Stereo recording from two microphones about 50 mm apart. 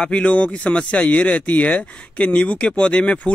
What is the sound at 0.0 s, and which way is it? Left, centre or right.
Speech, left.